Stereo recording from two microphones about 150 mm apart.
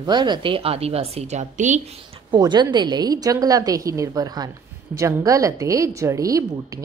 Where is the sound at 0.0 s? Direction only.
30° right (ahead or behind); by 1.8 s 55° right (ahead or behind).